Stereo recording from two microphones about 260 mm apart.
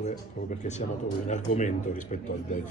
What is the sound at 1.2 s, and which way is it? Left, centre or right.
Speech, left.